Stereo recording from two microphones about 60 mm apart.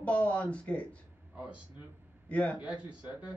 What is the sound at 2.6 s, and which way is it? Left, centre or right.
Speech, centre.